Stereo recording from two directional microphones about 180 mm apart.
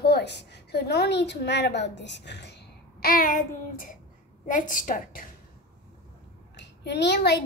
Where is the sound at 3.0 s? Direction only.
50° left (ahead or behind).